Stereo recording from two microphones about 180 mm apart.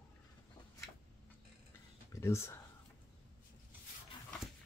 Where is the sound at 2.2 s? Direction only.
15° left (ahead or behind).